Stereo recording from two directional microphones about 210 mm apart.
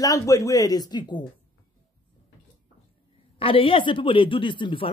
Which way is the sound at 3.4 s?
25° left (ahead or behind).